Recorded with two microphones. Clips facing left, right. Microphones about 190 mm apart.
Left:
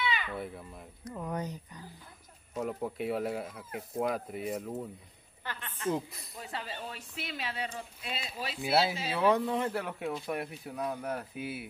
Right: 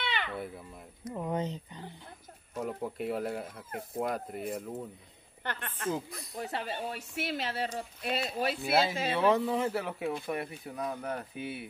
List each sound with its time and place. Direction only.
0.4 s speech: centre (ahead or behind)
1.0 s speech: 20° right (ahead or behind)
2.5 s speech: centre (ahead or behind)
5.4 s a woman's voice: 60° right (ahead or behind)
5.9 s speech: centre (ahead or behind)
6.3 s speech: 55° right (ahead or behind)
8.6 s speech: centre (ahead or behind)